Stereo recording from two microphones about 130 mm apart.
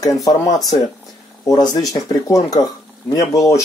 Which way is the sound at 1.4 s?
30° left (ahead or behind).